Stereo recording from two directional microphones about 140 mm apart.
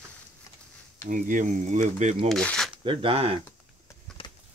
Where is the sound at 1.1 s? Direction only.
70° right (ahead or behind).